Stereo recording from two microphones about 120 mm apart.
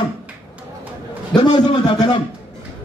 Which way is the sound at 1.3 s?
35° left (ahead or behind).